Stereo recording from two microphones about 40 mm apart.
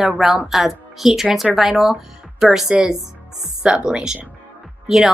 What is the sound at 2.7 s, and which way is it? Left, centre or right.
Speech, right.